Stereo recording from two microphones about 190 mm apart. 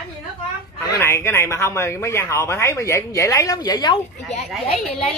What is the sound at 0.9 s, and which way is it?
Speech, 15° left (ahead or behind).